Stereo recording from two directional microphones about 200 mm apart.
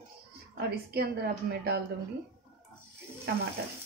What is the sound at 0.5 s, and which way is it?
A woman's voice, 50° right (ahead or behind).